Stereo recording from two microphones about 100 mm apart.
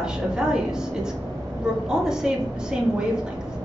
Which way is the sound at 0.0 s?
5° right (ahead or behind).